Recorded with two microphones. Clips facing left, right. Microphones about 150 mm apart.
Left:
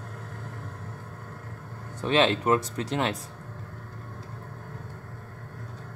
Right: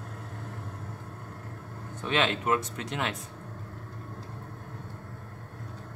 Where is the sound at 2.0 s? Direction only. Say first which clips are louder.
Left 5 dB; 35° left (ahead or behind).